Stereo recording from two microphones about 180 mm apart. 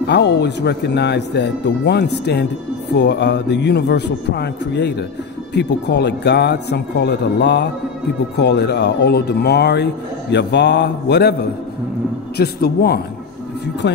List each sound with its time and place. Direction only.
0.0 s speech: 70° left (ahead or behind)
12.4 s a man's voice: 60° left (ahead or behind)